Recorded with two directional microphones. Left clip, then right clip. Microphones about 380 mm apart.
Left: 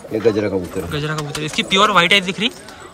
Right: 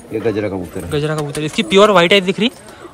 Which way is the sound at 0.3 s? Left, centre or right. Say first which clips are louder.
Left 2 dB; centre.